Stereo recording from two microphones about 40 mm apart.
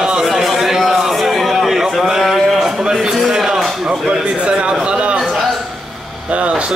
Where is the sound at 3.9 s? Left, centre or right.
Right.